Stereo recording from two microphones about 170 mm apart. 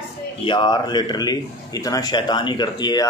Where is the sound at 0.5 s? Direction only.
25° left (ahead or behind).